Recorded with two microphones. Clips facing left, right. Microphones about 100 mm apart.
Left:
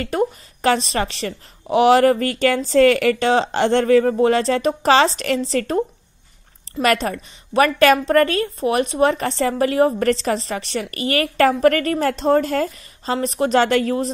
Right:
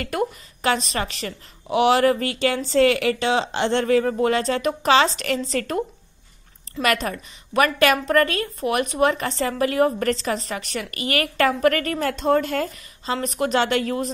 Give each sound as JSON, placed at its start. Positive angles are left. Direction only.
{"t": 0.0, "sound": "a woman's voice", "side_deg": 35}